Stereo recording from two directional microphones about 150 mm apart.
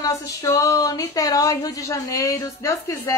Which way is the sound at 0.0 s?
20° left (ahead or behind).